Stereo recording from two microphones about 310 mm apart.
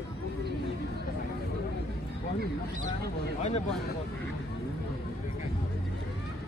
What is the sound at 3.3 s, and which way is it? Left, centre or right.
Speech, left.